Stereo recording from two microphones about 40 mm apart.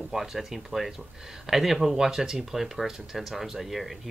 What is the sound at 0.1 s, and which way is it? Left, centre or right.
Speech, centre.